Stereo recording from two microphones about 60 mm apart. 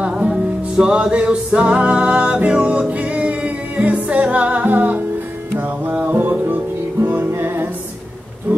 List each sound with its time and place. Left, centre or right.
0.0 s music: centre; by 7.6 s right
8.5 s bee: right